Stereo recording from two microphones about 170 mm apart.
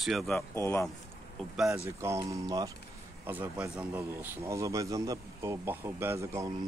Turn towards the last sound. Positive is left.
turn(degrees=-15)  # may be behind; listen again after turning